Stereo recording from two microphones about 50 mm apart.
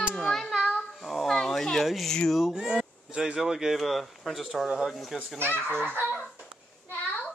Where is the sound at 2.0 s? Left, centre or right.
Centre.